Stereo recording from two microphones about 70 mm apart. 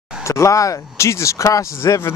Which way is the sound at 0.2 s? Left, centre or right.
Left.